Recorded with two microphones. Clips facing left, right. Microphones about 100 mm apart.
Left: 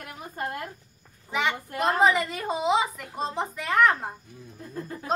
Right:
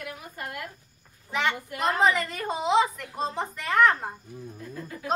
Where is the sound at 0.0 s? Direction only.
35° left (ahead or behind).